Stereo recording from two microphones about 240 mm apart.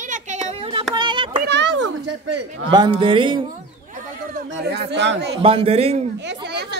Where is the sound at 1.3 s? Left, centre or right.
Right.